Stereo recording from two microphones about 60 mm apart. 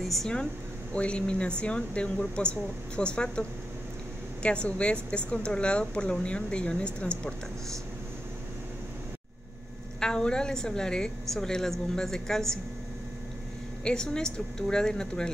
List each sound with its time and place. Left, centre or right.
0.0 s air conditioning: centre
0.9 s speech: centre
9.9 s speech: centre
13.8 s speech: centre